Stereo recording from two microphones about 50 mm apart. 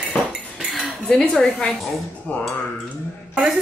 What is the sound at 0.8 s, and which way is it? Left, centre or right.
Dishes, centre.